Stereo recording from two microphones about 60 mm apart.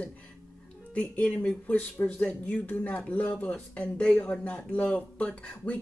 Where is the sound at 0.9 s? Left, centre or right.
Left.